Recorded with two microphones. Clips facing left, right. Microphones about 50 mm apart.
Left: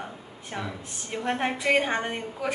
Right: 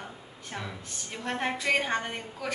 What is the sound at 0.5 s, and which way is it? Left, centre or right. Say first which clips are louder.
A woman's voice: left 4 dB; centre.